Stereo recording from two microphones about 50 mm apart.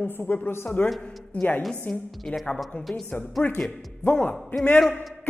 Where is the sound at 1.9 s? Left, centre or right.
Centre.